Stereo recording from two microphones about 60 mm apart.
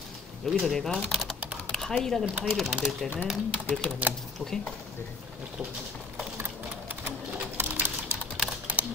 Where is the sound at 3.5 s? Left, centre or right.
Left.